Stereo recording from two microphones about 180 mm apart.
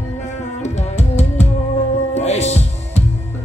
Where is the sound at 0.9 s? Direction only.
35° left (ahead or behind).